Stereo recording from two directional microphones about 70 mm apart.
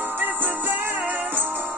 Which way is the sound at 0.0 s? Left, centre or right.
Right.